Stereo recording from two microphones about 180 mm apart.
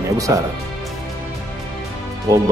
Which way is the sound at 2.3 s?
20° right (ahead or behind).